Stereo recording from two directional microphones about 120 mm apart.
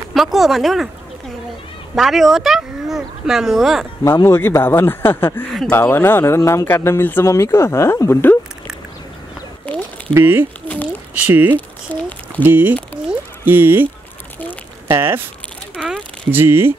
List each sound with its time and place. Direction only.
0.1 s speech: centre (ahead or behind)
2.0 s speech: centre (ahead or behind)
4.0 s speech: 20° left (ahead or behind)
9.7 s a sound: 10° left (ahead or behind)
10.1 s speech: 15° right (ahead or behind)
11.5 s a sound: 15° left (ahead or behind)
12.4 s speech: 15° right (ahead or behind)
13.0 s music: 15° right (ahead or behind)
14.9 s speech: 20° right (ahead or behind)
15.8 s a sound: 5° right (ahead or behind)
16.3 s speech: 20° right (ahead or behind)